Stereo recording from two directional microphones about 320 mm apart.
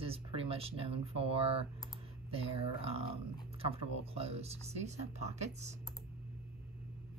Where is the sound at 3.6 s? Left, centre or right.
Centre.